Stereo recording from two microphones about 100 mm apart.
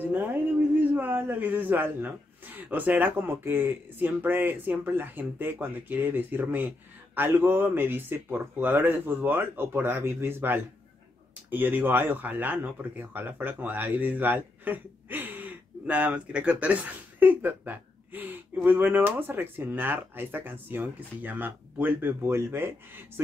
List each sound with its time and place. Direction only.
0.0 s speech: 20° right (ahead or behind)